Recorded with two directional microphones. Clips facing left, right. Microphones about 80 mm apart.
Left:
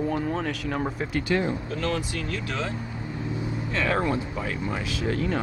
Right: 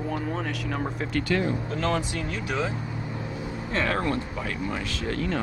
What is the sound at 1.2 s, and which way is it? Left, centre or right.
Speech, centre.